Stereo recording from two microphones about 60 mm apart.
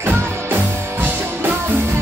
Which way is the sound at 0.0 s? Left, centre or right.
Right.